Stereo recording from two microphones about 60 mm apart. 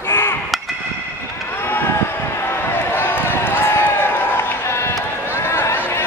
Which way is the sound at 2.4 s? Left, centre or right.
Left.